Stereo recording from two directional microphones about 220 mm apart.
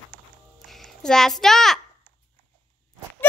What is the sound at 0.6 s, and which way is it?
A child's voice, centre (ahead or behind).